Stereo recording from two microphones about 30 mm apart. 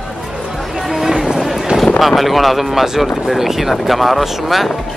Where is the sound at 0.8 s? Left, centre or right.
Centre.